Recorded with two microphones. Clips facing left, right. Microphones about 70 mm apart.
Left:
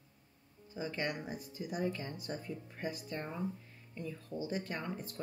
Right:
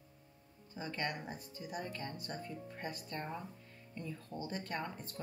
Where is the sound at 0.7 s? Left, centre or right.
Centre.